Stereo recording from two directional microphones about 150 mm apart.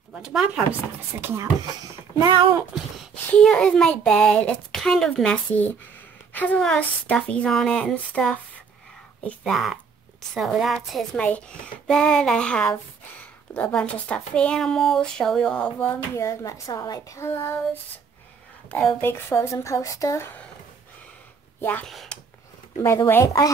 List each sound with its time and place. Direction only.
0.2 s a child's voice: 5° right (ahead or behind)
1.2 s speech: 20° right (ahead or behind)
3.3 s a child's voice: 5° left (ahead or behind)
16.2 s a child's voice: 20° left (ahead or behind)
18.7 s speech: 10° left (ahead or behind)
21.5 s speech: 15° left (ahead or behind)
21.8 s speech: centre (ahead or behind)
22.8 s a child's voice: 20° left (ahead or behind)